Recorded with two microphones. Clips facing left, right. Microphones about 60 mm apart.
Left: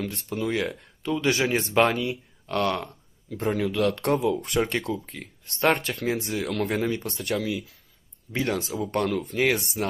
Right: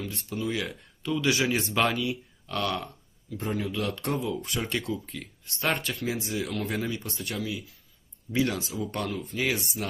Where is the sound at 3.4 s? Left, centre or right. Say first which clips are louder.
Left 6 dB; left.